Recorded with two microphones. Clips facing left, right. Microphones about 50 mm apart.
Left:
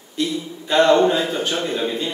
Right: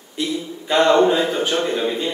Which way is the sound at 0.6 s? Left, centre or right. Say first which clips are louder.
Even; right.